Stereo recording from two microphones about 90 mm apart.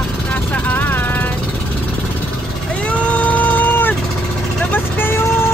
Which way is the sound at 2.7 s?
15° left (ahead or behind).